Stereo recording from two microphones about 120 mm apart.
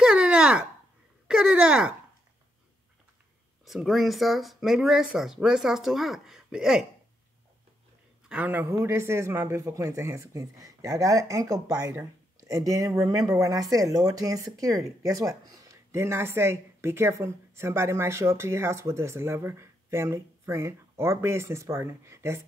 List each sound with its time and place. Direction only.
0.0 s a sound: 10° right (ahead or behind)
1.2 s speech: 5° right (ahead or behind)
3.6 s speech: centre (ahead or behind)
8.3 s speech: 15° right (ahead or behind)